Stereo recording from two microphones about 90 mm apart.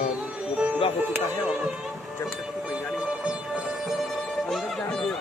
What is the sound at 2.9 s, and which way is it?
Music, 10° right (ahead or behind).